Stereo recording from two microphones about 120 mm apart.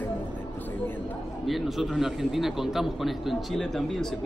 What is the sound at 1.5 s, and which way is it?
A man's voice, centre (ahead or behind).